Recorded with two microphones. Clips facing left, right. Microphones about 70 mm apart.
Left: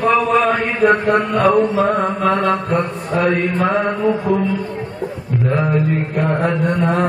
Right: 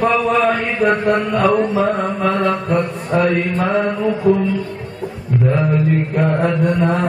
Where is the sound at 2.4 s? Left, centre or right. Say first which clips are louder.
Even; centre.